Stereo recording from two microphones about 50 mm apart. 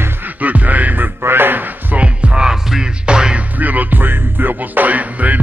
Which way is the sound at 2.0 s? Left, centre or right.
Right.